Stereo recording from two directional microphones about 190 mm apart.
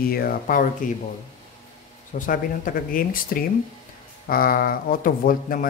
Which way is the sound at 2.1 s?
45° left (ahead or behind).